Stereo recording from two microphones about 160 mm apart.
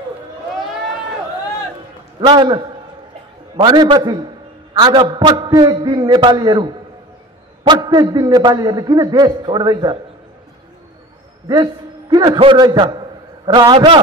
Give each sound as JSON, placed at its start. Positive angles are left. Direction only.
{"t": 2.1, "sound": "a man's voice", "side_deg": -30}
{"t": 11.4, "sound": "a man's voice", "side_deg": -25}